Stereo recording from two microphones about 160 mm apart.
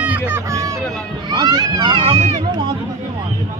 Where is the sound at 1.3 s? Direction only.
25° right (ahead or behind); by 2.4 s 40° right (ahead or behind).